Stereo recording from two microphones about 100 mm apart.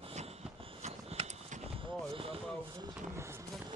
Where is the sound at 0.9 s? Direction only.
90° right.